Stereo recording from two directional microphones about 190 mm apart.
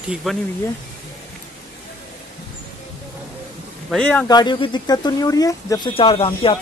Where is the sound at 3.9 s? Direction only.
5° left (ahead or behind).